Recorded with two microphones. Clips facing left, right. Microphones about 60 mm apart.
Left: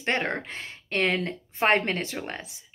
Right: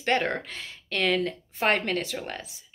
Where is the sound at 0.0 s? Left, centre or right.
Left.